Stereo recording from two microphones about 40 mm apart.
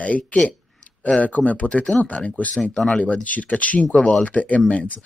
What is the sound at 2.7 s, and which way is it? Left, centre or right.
Speech, left.